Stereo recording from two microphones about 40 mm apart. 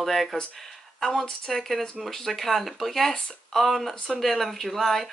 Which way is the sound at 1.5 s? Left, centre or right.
Centre.